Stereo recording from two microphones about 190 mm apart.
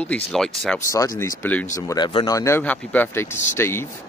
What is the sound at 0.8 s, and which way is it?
Speech, 15° left (ahead or behind).